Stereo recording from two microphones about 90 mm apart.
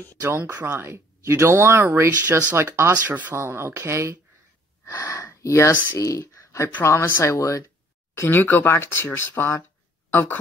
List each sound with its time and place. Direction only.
0.2 s speech: 25° right (ahead or behind)
4.8 s a sound: 35° left (ahead or behind)
5.9 s speech: 35° left (ahead or behind)
8.2 s speech: 20° left (ahead or behind)